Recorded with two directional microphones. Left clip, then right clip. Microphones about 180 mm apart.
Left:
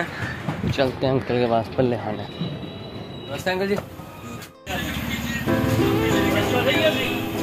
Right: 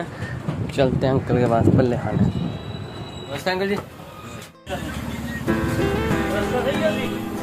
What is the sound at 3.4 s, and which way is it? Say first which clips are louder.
Speech: right 1 dB; 5° right (ahead or behind).